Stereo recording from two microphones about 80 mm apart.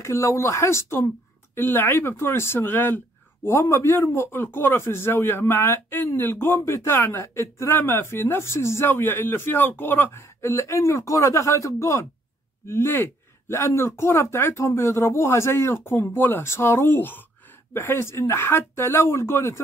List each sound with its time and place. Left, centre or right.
0.0 s a man's voice: left